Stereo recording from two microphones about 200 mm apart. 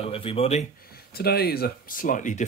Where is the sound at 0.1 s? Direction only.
30° left (ahead or behind).